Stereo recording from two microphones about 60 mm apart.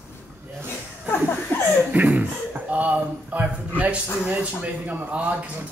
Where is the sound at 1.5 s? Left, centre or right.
Left.